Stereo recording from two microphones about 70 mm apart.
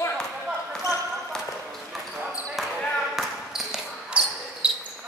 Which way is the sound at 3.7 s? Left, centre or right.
Centre.